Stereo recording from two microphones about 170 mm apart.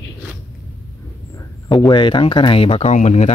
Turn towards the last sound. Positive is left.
turn(degrees=40)  # may be behind; listen again after turning